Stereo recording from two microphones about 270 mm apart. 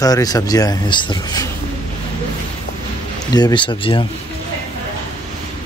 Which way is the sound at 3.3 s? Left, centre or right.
Centre.